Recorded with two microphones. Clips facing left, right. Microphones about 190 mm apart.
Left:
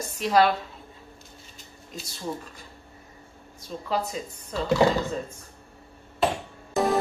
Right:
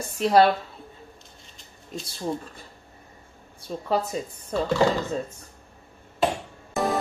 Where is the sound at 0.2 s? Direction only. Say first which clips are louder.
Right 3 dB; 30° right (ahead or behind).